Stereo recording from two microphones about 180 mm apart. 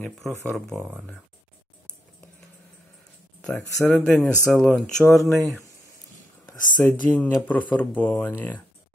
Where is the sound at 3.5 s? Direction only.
5° left (ahead or behind).